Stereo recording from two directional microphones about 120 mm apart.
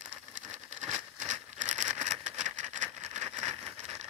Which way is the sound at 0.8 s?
85° right.